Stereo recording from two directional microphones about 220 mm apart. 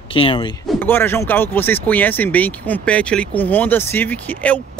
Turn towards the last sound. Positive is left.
turn(degrees=5)  # may be behind; listen again after turning